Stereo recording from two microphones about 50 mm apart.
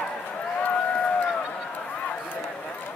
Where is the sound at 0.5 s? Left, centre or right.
Left.